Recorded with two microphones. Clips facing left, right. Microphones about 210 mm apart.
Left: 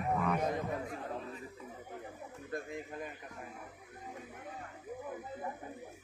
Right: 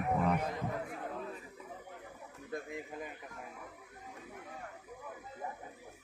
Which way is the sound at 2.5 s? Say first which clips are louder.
Even; centre (ahead or behind).